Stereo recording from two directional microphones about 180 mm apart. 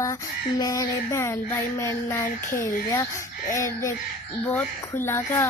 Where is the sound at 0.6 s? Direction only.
20° left (ahead or behind).